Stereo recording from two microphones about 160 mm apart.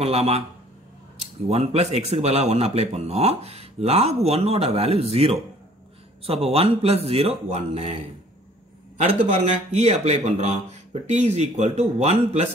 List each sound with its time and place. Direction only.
0.0 s speech: 40° right (ahead or behind)
9.0 s speech: 45° right (ahead or behind)